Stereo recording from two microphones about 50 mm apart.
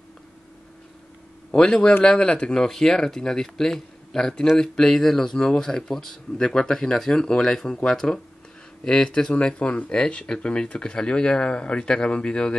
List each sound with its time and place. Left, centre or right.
1.5 s a man's voice: centre